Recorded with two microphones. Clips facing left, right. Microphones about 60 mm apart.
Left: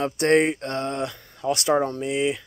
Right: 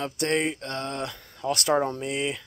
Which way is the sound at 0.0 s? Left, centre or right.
Left.